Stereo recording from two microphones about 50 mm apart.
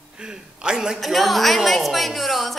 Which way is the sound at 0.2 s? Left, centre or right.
Centre.